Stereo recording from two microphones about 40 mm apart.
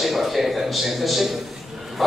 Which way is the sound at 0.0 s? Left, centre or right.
Centre.